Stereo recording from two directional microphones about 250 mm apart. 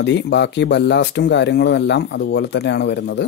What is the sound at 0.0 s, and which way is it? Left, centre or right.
Speech, left.